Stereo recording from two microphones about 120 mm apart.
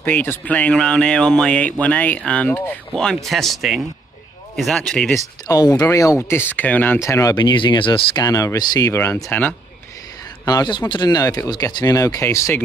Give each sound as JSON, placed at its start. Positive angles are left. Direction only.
{"t": 0.0, "sound": "speech", "side_deg": 15}
{"t": 2.9, "sound": "speech", "side_deg": 5}
{"t": 5.5, "sound": "speech", "side_deg": 30}
{"t": 8.2, "sound": "speech", "side_deg": 30}
{"t": 10.4, "sound": "speech", "side_deg": 35}